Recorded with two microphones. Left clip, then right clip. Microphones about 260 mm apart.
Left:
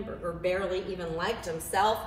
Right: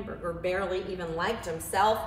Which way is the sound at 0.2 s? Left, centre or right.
Centre.